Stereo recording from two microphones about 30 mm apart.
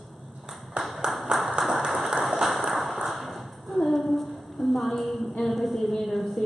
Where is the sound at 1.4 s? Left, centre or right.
Centre.